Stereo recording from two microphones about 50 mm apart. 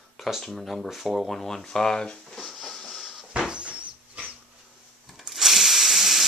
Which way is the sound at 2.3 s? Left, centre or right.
Centre.